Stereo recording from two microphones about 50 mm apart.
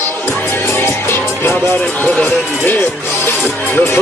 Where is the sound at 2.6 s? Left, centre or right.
Left.